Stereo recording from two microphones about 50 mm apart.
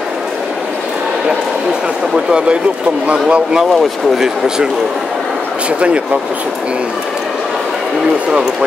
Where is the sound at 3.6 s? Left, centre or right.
Centre; by 6.0 s right.